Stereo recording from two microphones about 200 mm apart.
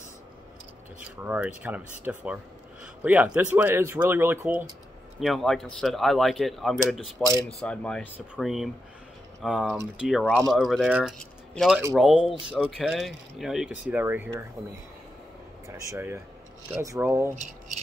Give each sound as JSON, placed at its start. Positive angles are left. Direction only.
{"t": 0.9, "sound": "speech", "side_deg": -10}
{"t": 12.2, "sound": "speech", "side_deg": 25}
{"t": 12.4, "sound": "speech", "side_deg": -5}
{"t": 15.7, "sound": "speech", "side_deg": -10}